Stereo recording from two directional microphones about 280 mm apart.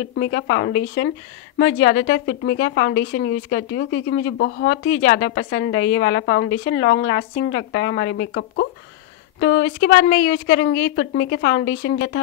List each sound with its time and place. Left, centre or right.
0.1 s a woman's voice: left